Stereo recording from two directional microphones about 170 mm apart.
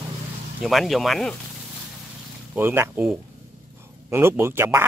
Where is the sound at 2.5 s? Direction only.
15° right (ahead or behind).